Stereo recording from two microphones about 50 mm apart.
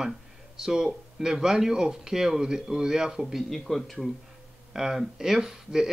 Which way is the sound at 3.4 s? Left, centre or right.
Centre.